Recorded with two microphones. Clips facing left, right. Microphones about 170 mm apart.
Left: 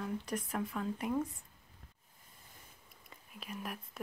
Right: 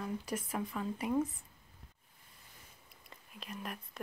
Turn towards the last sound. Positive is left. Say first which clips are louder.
# left 1 dB
turn(degrees=5)  # may be behind; listen again after turning